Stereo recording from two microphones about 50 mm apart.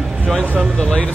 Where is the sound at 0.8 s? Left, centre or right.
Left.